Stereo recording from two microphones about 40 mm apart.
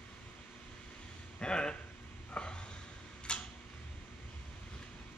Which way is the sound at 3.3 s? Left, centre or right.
Left.